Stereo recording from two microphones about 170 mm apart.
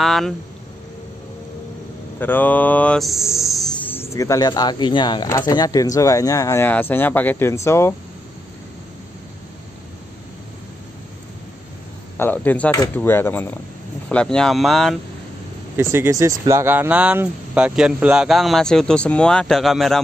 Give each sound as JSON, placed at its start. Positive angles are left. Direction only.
{"t": 0.0, "sound": "speech", "side_deg": 0}
{"t": 2.1, "sound": "speech", "side_deg": 10}
{"t": 3.8, "sound": "speech", "side_deg": 15}
{"t": 12.2, "sound": "speech", "side_deg": 10}
{"t": 15.7, "sound": "speech", "side_deg": -15}